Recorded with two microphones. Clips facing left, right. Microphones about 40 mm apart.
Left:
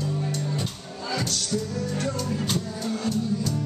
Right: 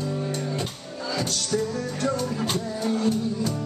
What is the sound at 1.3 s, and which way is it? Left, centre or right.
Music, right.